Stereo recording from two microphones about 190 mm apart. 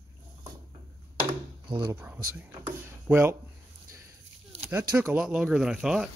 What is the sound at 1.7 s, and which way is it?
Speech, 20° right (ahead or behind).